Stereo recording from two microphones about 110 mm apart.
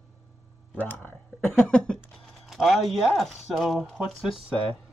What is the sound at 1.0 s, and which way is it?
Speech, 5° left (ahead or behind).